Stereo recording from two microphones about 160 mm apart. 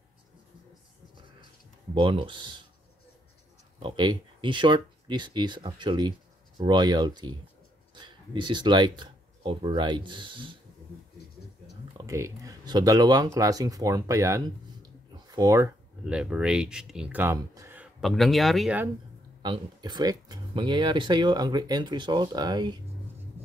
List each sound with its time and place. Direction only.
2.0 s speech: 30° right (ahead or behind)
3.8 s speech: 30° right (ahead or behind)
12.0 s speech: 20° right (ahead or behind)
16.1 s speech: 5° right (ahead or behind)
18.0 s speech: centre (ahead or behind)
19.4 s speech: 30° right (ahead or behind)